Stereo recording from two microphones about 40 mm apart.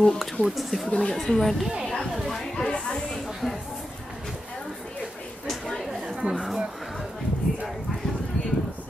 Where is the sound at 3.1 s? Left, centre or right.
Centre.